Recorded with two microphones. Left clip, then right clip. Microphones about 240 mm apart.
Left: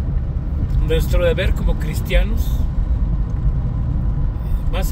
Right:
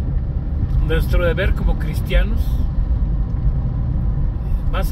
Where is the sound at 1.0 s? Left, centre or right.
Centre.